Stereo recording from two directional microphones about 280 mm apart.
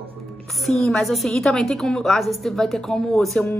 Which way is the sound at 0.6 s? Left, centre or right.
Centre.